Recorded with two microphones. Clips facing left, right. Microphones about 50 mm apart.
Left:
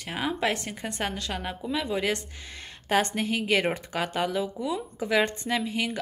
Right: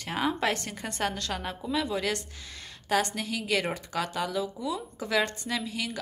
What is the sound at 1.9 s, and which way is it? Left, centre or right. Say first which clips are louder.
Speech: left 2 dB; left.